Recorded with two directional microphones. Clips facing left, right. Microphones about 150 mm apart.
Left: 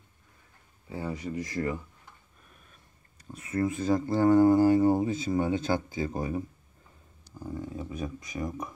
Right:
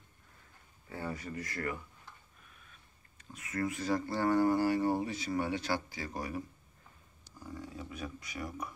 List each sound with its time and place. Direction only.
0.8 s speech: 15° left (ahead or behind)
3.3 s speech: 30° left (ahead or behind)
7.4 s speech: 20° left (ahead or behind)